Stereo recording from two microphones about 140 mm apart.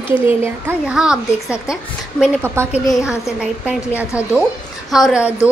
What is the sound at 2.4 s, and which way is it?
Speech, 15° right (ahead or behind).